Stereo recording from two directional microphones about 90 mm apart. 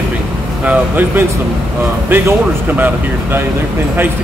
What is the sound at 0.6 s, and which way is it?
Speech, 20° right (ahead or behind).